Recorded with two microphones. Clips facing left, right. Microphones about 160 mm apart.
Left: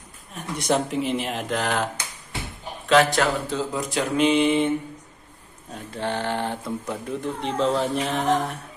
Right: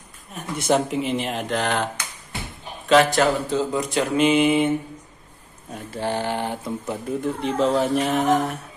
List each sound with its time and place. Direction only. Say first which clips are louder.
0.6 s mantra: right 2 dB; centre (ahead or behind)
2.9 s mantra: right 2 dB; centre (ahead or behind)
5.7 s speech: right 2 dB; 5° right (ahead or behind)
6.9 s mantra: right 5 dB; 5° right (ahead or behind)